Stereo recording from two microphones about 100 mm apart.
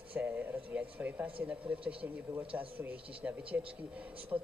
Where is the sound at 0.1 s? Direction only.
15° right (ahead or behind).